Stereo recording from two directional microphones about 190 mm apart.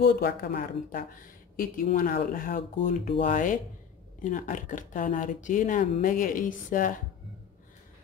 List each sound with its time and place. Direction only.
0.0 s speech: 55° left (ahead or behind)